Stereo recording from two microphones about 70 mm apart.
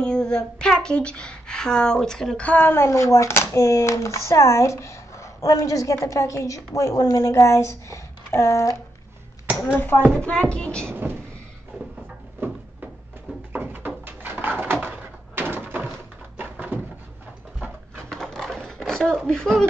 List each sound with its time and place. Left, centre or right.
0.0 s speech: centre
2.6 s speech: left
9.8 s speech: left
10.5 s speech: centre
10.9 s speech: right
12.4 s a sound: right
13.5 s bird: right
15.3 s door: right
18.1 s typing: centre
19.2 s speech: centre